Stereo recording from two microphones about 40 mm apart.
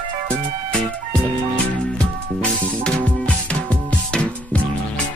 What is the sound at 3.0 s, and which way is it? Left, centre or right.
Music, left.